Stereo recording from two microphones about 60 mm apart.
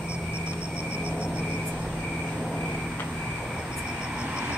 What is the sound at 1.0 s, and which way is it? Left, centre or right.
Vehicle, centre.